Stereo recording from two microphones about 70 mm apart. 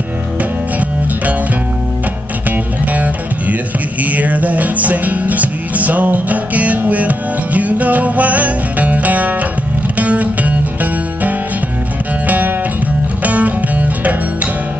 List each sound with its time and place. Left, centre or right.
0.4 s music: right
2.5 s music: right